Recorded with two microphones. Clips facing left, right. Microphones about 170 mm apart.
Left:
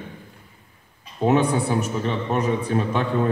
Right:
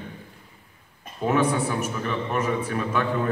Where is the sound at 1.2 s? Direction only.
30° left (ahead or behind).